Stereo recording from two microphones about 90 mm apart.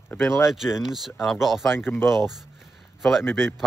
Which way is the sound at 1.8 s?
25° left (ahead or behind).